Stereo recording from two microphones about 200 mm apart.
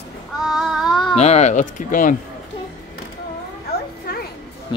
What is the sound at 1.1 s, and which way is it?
Speech, 35° left (ahead or behind).